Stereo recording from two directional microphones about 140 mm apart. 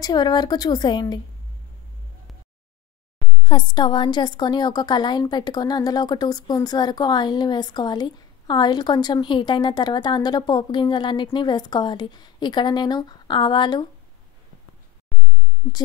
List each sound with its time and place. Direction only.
0.0 s a woman's voice: 30° left (ahead or behind)
3.4 s speech: 30° left (ahead or behind)
15.1 s a sound: 5° left (ahead or behind)